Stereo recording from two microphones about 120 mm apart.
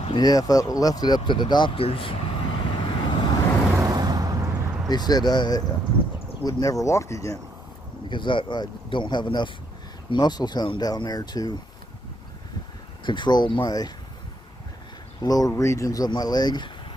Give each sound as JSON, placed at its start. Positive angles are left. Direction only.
{"t": 0.1, "sound": "speech", "side_deg": 30}
{"t": 1.9, "sound": "vehicle", "side_deg": 50}
{"t": 3.8, "sound": "a sound", "side_deg": -35}
{"t": 4.8, "sound": "speech", "side_deg": 35}
{"t": 8.1, "sound": "speech", "side_deg": 40}
{"t": 13.0, "sound": "speech", "side_deg": 40}
{"t": 15.2, "sound": "speech", "side_deg": 30}